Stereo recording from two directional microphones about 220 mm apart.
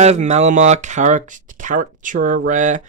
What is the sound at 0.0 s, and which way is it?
Speech, 30° right (ahead or behind).